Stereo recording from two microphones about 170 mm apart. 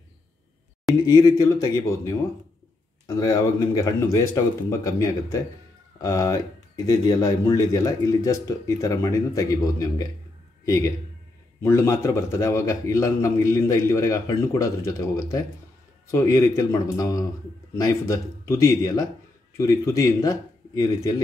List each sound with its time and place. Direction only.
1.0 s speech: 25° left (ahead or behind)
3.2 s a man's voice: 20° left (ahead or behind)